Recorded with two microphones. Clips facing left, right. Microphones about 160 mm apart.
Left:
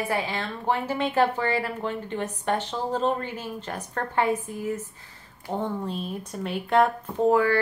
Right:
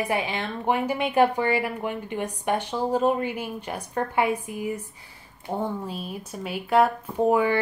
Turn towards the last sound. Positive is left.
turn(degrees=-15)  # may be behind; listen again after turning